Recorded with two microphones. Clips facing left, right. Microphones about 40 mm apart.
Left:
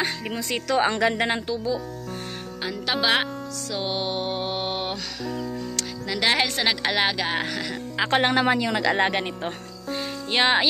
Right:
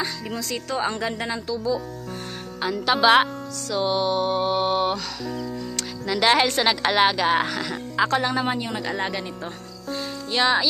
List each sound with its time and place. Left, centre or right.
0.0 s speech: left
0.7 s a woman's voice: left
2.6 s speech: centre
3.7 s music: centre
5.8 s speech: centre
8.2 s speech: left
8.5 s speech: left
8.9 s speech: left
9.8 s music: left